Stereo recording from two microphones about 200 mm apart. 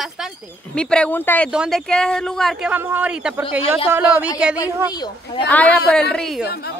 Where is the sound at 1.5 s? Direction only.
Centre (ahead or behind).